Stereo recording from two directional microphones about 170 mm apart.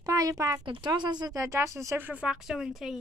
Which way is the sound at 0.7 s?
25° right (ahead or behind).